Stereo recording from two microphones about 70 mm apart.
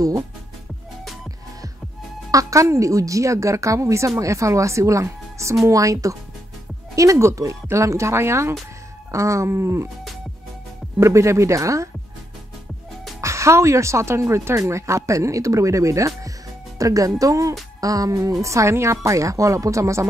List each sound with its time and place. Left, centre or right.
2.3 s a woman's voice: right
11.0 s a woman's voice: right
13.2 s a woman's voice: right
17.7 s music: right
18.4 s a woman's voice: right